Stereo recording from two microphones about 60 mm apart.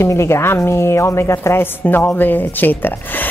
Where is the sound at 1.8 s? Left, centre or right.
Left.